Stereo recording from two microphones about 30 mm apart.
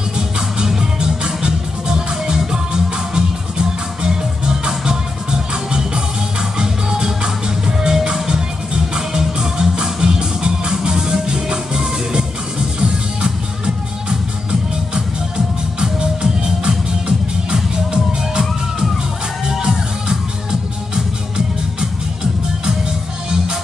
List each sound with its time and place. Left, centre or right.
0.7 s music: right
15.3 s music: right
17.9 s music: right